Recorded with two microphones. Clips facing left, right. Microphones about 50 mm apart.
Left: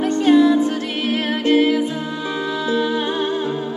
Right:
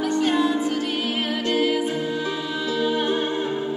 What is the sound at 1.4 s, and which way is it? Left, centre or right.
Music, left.